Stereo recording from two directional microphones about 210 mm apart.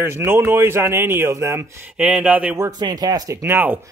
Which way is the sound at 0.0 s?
10° right (ahead or behind).